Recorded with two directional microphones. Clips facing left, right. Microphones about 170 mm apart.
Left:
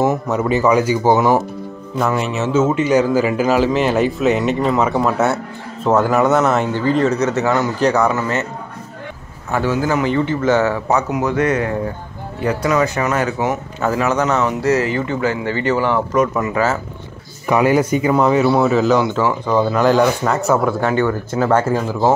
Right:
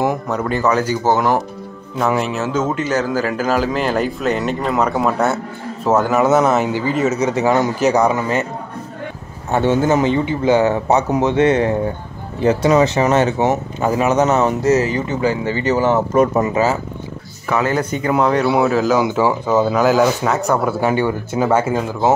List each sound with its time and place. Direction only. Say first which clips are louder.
0.0 s a man's voice: left 2 dB; 5° left (ahead or behind); by 8.5 s 15° right (ahead or behind)
9.5 s speech: right 3 dB; 25° right (ahead or behind)
17.5 s a man's voice: left 4 dB; 15° left (ahead or behind); by 22.1 s 5° right (ahead or behind)